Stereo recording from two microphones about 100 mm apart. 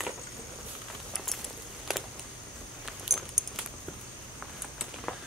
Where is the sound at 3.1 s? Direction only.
5° right (ahead or behind).